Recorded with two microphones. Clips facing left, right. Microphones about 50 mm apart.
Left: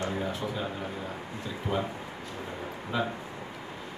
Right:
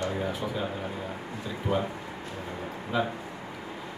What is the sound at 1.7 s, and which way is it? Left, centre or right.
Speech, centre.